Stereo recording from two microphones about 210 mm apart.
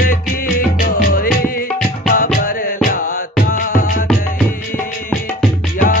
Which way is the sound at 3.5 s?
40° left (ahead or behind).